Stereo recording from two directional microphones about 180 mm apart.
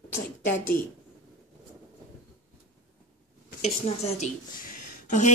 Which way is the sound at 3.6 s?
35° left (ahead or behind).